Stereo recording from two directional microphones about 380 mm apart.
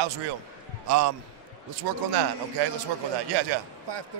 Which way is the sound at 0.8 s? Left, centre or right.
Right.